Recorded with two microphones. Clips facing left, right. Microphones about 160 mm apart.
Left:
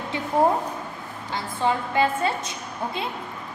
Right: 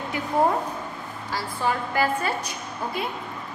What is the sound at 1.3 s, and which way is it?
A woman's voice, 25° left (ahead or behind).